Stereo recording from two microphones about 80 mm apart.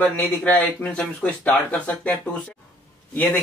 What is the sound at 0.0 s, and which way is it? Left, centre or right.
Speech, centre.